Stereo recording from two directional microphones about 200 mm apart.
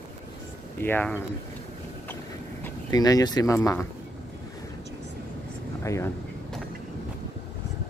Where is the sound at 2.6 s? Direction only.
15° left (ahead or behind).